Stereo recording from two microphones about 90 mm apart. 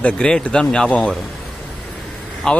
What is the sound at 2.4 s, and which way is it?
Speech, 10° left (ahead or behind).